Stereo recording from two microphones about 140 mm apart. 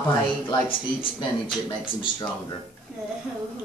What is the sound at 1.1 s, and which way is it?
Speech, 35° left (ahead or behind).